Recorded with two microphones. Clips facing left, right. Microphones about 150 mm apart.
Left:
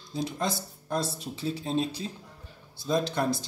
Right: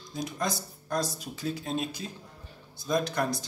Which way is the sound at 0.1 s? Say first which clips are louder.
Left 2 dB; 25° left (ahead or behind).